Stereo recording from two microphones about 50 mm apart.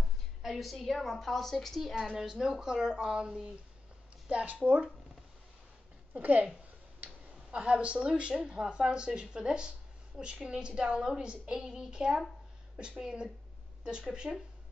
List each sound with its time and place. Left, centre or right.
0.4 s a woman's voice: centre
2.1 s a woman's voice: centre; by 4.8 s right
6.1 s speech: right
7.5 s a woman's voice: right